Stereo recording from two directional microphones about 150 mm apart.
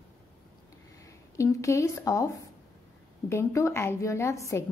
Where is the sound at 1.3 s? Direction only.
20° left (ahead or behind).